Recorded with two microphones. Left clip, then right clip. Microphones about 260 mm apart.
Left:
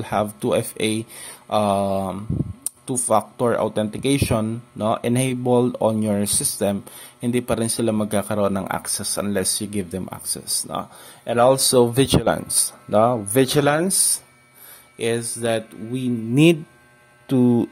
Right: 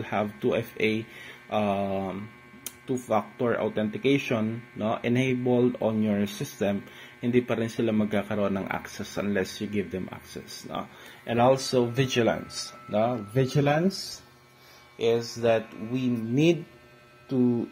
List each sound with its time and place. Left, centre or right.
0.0 s speech: left
15.0 s speech: left